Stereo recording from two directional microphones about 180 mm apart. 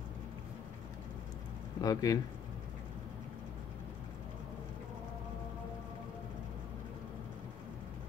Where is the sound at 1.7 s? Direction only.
20° left (ahead or behind).